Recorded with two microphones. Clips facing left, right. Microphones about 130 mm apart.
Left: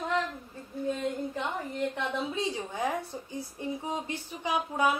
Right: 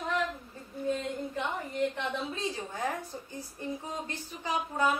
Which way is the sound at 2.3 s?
15° left (ahead or behind).